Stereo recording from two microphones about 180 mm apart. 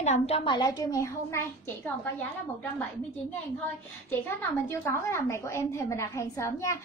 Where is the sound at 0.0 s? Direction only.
40° left (ahead or behind).